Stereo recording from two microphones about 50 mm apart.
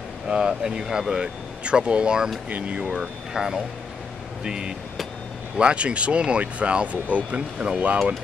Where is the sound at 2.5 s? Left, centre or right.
Right.